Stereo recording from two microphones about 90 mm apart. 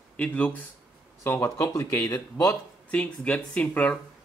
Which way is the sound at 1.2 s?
30° left (ahead or behind).